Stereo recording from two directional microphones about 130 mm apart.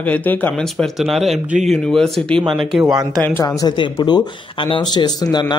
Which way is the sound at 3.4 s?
35° left (ahead or behind).